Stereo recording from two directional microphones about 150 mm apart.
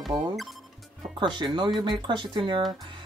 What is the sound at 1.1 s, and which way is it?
Speech, 30° right (ahead or behind).